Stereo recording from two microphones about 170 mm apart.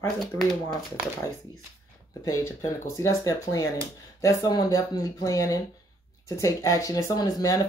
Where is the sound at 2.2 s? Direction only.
20° left (ahead or behind).